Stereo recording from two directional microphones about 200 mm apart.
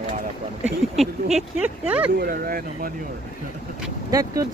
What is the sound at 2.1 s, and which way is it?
Speech, 50° right (ahead or behind).